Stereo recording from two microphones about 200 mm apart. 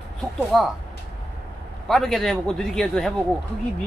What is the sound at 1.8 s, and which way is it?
Speech, centre (ahead or behind).